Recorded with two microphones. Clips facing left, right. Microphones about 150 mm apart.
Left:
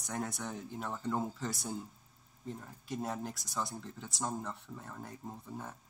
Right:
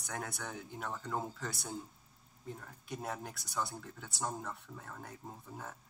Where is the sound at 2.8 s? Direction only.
Centre (ahead or behind).